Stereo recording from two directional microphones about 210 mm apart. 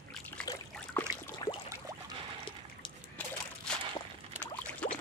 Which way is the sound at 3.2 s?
10° left (ahead or behind).